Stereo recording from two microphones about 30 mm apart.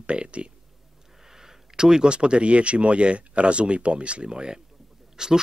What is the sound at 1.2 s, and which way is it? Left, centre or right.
Speech, centre.